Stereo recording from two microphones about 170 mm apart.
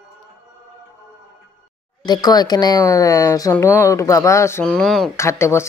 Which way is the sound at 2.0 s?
25° left (ahead or behind).